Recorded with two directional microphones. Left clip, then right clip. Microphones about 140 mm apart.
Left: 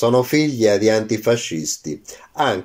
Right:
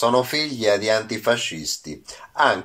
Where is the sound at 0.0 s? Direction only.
45° left (ahead or behind).